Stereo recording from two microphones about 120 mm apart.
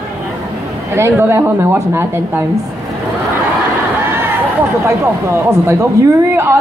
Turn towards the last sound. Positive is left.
turn(degrees=-20)  # may be behind; listen again after turning